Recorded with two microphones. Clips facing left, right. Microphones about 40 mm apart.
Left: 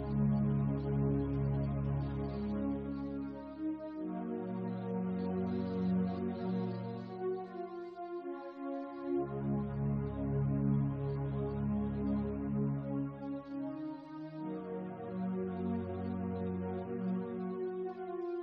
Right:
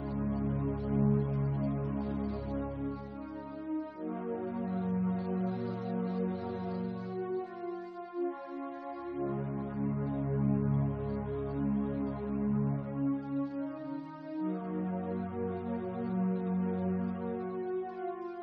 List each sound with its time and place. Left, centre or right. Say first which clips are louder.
0.1 s music: left 2 dB; centre
4.3 s music: right 4 dB; centre
9.1 s music: left 1 dB; right
14.8 s music: right 5 dB; right